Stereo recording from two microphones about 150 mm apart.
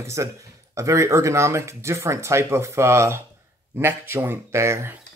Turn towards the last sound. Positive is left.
turn(degrees=-20)  # may be behind; listen again after turning